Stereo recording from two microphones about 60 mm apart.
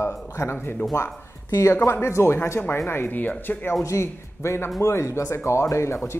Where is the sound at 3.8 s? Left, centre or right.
Left.